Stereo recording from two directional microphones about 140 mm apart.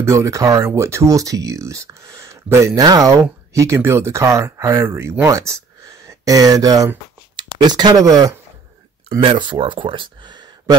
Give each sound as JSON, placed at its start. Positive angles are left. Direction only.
{"t": 0.0, "sound": "speech", "side_deg": -20}
{"t": 6.0, "sound": "a sound", "side_deg": -25}
{"t": 7.6, "sound": "speech", "side_deg": -30}